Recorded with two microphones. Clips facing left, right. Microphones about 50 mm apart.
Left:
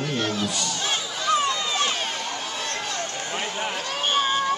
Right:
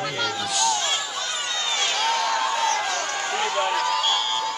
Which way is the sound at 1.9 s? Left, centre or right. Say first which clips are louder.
Right 7 dB; right.